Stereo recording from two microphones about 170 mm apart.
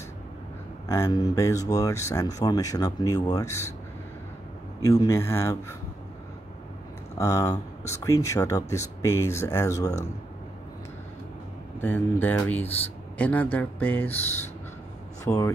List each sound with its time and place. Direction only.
0.8 s speech: 15° left (ahead or behind)
4.8 s speech: 20° left (ahead or behind)
7.2 s speech: 20° left (ahead or behind)
11.8 s speech: 10° left (ahead or behind)
15.2 s speech: 20° left (ahead or behind)